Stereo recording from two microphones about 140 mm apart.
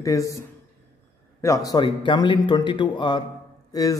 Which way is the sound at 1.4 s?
25° left (ahead or behind).